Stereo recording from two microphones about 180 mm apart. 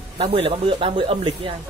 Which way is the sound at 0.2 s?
30° right (ahead or behind).